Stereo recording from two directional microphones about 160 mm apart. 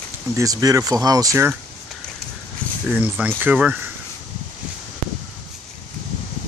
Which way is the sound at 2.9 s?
10° right (ahead or behind).